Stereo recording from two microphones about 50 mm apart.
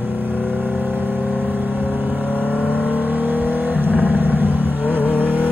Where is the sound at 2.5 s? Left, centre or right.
Left.